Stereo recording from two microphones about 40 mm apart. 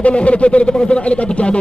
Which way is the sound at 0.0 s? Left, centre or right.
Left.